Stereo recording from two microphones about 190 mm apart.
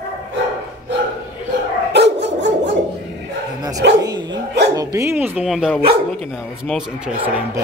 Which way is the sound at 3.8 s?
60° right (ahead or behind).